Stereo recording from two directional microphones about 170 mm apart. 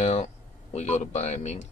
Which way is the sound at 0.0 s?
40° left (ahead or behind).